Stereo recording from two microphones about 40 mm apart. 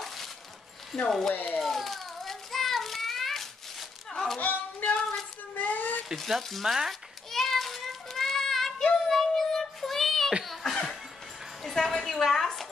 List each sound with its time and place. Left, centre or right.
0.9 s speech: centre
1.3 s speech: left
1.6 s child singing: centre
4.4 s speech: left
5.6 s a sound: left
6.1 s speech: centre
6.9 s child singing: centre
10.4 s laughter: centre
10.7 s music: centre
11.7 s a woman's voice: centre